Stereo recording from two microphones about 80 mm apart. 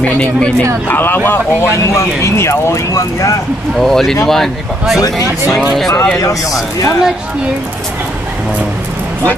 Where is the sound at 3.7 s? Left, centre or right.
Centre.